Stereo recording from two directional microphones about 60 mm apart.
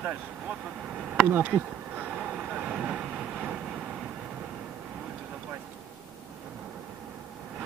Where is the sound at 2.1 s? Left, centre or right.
Centre.